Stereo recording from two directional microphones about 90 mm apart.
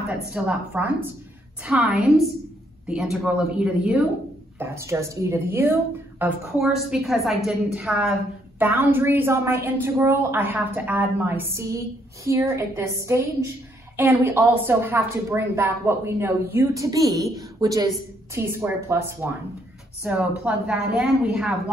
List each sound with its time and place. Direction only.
0.3 s a woman's voice: 15° right (ahead or behind)
4.6 s a woman's voice: 30° right (ahead or behind)
6.6 s a woman's voice: centre (ahead or behind)
8.5 s a woman's voice: 25° right (ahead or behind); by 17.8 s 45° right (ahead or behind)
18.3 s a woman's voice: 30° right (ahead or behind)
20.0 s a woman's voice: 10° right (ahead or behind)